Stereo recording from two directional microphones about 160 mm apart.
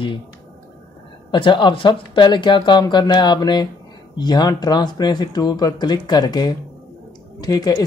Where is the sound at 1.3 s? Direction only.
30° left (ahead or behind).